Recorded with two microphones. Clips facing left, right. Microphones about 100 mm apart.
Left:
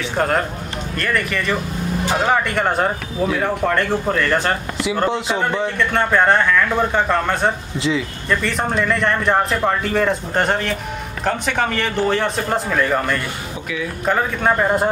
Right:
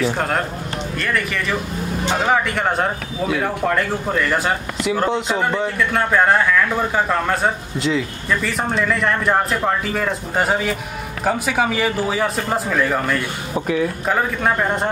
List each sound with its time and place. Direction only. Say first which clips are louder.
0.0 s speech: left 1 dB; centre (ahead or behind)